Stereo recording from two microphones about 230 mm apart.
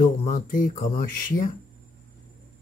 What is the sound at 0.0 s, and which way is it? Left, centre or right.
Speech, left.